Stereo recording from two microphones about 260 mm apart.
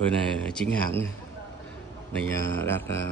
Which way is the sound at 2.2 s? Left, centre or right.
Centre.